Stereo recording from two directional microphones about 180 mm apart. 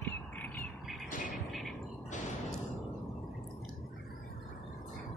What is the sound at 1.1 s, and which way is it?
Music, 45° left (ahead or behind).